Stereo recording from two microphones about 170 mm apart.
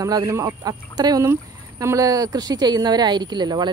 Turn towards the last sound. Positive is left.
turn(degrees=-25)  # may be behind; listen again after turning